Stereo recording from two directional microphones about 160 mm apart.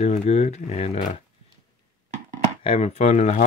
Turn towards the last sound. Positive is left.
turn(degrees=45)  # may be behind; listen again after turning